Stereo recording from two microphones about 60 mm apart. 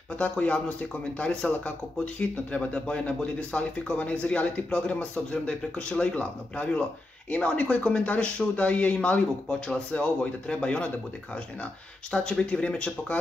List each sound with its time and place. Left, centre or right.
0.2 s speech: left